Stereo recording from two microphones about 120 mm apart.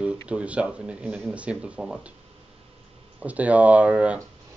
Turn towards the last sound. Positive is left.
turn(degrees=-10)  # may be behind; listen again after turning